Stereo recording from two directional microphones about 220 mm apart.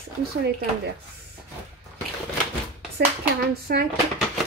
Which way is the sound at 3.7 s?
40° right (ahead or behind).